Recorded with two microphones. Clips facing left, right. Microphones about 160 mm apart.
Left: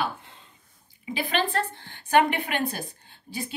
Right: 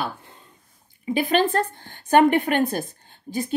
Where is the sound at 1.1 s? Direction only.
45° right (ahead or behind).